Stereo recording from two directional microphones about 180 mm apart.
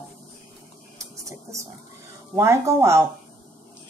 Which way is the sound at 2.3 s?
15° right (ahead or behind).